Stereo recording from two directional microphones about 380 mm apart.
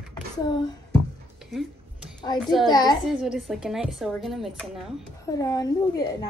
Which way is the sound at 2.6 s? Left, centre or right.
Centre.